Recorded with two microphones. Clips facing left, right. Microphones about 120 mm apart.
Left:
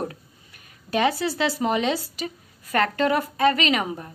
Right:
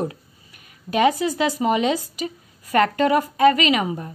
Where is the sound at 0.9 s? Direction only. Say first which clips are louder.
Right 4 dB; 10° right (ahead or behind).